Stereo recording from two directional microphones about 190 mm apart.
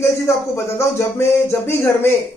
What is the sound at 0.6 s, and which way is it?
Speech, 15° left (ahead or behind).